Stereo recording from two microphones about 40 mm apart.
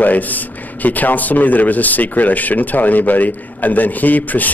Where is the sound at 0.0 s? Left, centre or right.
Left.